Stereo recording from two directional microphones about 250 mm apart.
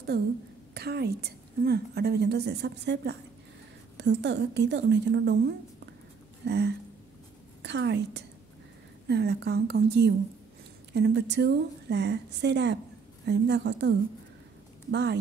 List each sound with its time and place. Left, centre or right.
0.7 s a woman's voice: right
6.4 s a woman's voice: right